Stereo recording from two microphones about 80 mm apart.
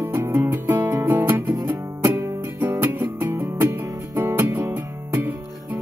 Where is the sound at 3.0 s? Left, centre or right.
Right.